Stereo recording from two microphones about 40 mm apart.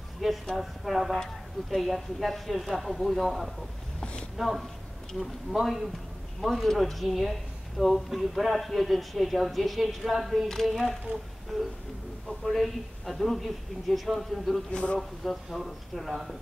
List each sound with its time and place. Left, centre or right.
0.5 s a woman's voice: centre
1.1 s speech: centre
1.8 s a woman's voice: centre
4.0 s a sound: left
4.4 s a woman's voice: centre
11.5 s a woman's voice: centre
14.7 s speech: left
15.0 s a woman's voice: centre